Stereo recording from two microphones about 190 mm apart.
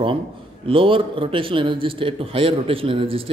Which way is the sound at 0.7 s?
30° right (ahead or behind).